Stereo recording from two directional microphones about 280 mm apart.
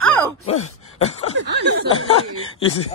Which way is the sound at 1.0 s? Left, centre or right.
Left.